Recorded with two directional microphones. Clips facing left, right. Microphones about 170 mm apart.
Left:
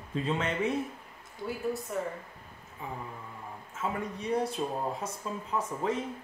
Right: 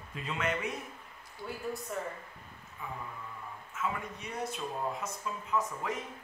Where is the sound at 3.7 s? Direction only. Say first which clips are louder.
Left 3 dB; 30° left (ahead or behind).